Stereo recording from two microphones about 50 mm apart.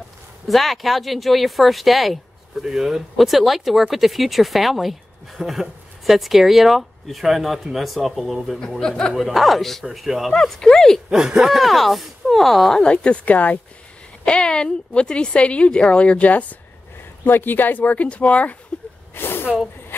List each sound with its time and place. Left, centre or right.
0.5 s speech: centre
8.5 s speech: centre
9.1 s speech: centre
10.3 s speech: centre
11.1 s speech: centre
12.8 s a woman's voice: left
14.2 s a woman's voice: left
17.2 s speech: left
19.1 s snort: left
19.9 s insect: left